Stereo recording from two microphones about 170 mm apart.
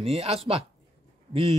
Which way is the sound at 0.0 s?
35° right (ahead or behind).